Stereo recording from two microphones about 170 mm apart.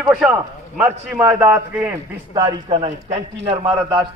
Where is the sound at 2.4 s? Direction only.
25° right (ahead or behind).